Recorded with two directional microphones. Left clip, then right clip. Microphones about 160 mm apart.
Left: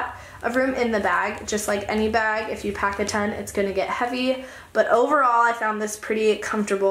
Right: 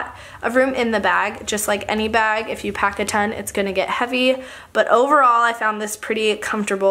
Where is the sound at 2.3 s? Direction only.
55° right (ahead or behind).